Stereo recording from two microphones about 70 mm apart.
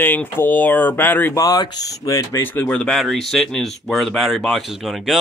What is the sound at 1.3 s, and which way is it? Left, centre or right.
Speech, left.